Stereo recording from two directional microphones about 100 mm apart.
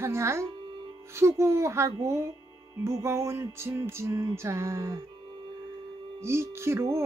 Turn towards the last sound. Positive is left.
turn(degrees=-25)  # may be behind; listen again after turning